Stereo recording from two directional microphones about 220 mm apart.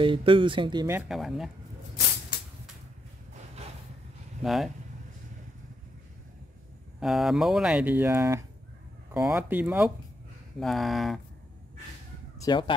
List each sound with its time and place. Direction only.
0.0 s speech: 25° right (ahead or behind); by 1.5 s centre (ahead or behind)
4.4 s speech: centre (ahead or behind)
7.0 s speech: centre (ahead or behind)
12.4 s speech: 20° left (ahead or behind)